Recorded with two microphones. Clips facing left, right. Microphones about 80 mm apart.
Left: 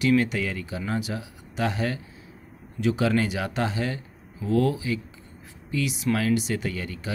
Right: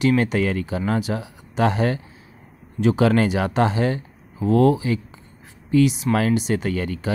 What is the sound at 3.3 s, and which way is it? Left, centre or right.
Speech, right.